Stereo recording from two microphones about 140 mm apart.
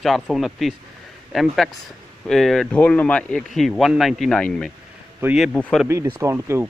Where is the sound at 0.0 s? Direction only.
Centre (ahead or behind).